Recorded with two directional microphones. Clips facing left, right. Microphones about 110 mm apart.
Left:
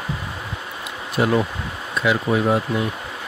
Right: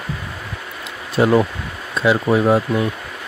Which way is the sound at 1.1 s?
30° right (ahead or behind).